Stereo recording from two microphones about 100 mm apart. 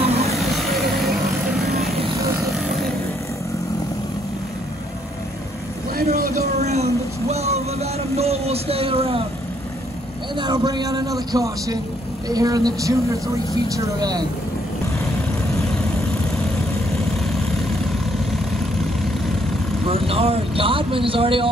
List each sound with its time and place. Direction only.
0.0 s vehicle: 90° right
0.3 s vehicle: centre (ahead or behind)
6.6 s music: 90° right; by 9.2 s 70° right (ahead or behind)
10.3 s a man's voice: 45° right (ahead or behind)
19.9 s speech: 70° right (ahead or behind)